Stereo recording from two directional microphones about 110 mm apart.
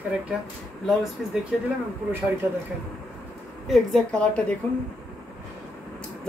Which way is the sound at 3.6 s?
Centre (ahead or behind).